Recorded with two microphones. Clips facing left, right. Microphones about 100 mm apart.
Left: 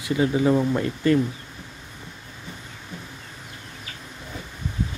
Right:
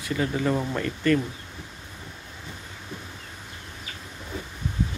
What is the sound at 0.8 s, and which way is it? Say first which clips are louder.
Speech: left 2 dB; 20° left (ahead or behind).